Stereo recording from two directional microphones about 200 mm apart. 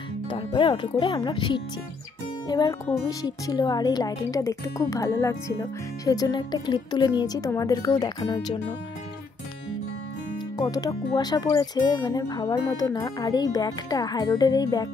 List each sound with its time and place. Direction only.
0.3 s speech: 25° left (ahead or behind)
10.6 s speech: 20° left (ahead or behind)